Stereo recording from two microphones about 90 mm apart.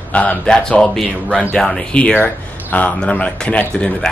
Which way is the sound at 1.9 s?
15° left (ahead or behind).